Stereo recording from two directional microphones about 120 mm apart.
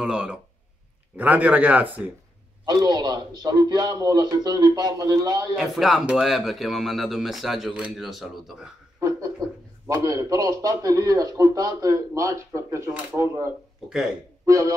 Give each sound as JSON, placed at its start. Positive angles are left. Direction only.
{"t": 0.0, "sound": "speech", "side_deg": -5}
{"t": 2.6, "sound": "a man's voice", "side_deg": -35}
{"t": 5.6, "sound": "a man's voice", "side_deg": -5}
{"t": 9.8, "sound": "a man's voice", "side_deg": -30}
{"t": 13.8, "sound": "a man's voice", "side_deg": -5}
{"t": 14.4, "sound": "a sound", "side_deg": -25}